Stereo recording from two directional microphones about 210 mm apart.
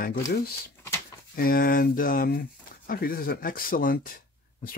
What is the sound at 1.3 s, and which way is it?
Speech, 45° left (ahead or behind).